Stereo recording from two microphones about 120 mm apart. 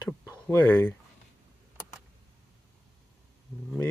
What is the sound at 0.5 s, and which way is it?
Speech, 15° left (ahead or behind).